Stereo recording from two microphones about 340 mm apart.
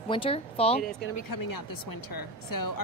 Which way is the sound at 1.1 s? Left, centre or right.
Left.